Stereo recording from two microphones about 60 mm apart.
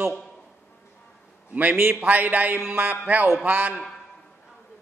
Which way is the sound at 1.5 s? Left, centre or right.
Right.